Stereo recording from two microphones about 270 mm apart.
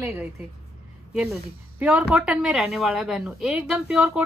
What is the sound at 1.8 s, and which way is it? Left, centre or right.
Speech, centre.